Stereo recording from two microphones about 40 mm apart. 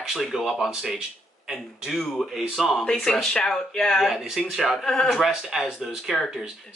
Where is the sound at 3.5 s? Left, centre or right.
Centre.